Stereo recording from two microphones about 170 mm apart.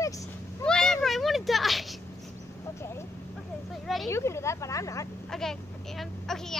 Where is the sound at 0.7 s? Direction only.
5° left (ahead or behind).